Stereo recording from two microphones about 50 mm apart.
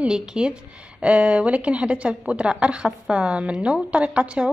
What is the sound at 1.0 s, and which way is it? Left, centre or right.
A woman's voice, right.